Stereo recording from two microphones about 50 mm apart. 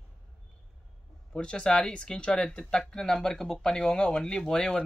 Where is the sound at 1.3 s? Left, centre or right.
Left.